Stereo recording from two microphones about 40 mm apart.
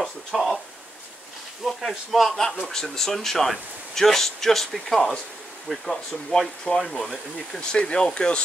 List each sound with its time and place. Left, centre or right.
0.0 s speech: centre
1.6 s speech: centre; by 8.4 s left